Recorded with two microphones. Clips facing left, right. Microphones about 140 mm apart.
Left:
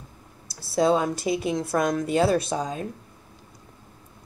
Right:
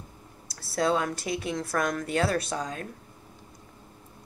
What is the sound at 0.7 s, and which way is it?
Speech, 20° left (ahead or behind).